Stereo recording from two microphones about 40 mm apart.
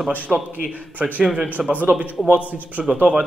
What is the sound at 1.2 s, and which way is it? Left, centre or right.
Speech, centre.